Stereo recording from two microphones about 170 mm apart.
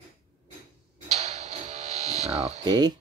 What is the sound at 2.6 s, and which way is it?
Speech, 25° right (ahead or behind).